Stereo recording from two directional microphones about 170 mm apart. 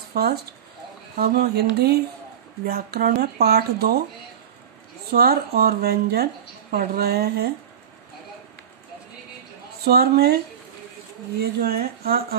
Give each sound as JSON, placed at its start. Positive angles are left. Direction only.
{"t": 0.1, "sound": "speech", "side_deg": -70}
{"t": 1.1, "sound": "music", "side_deg": -65}
{"t": 2.6, "sound": "speech", "side_deg": -65}
{"t": 5.1, "sound": "speech", "side_deg": -65}
{"t": 7.0, "sound": "music", "side_deg": -65}
{"t": 9.8, "sound": "speech", "side_deg": -65}